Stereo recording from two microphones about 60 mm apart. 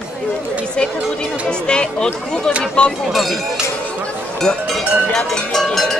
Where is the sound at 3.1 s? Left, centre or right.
Centre.